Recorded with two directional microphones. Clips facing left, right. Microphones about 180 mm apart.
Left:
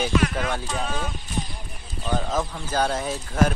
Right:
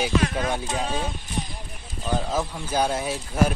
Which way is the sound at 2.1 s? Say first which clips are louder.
Even; 10° right (ahead or behind).